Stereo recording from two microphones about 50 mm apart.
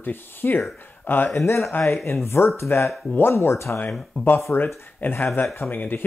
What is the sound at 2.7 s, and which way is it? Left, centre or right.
Speech, left.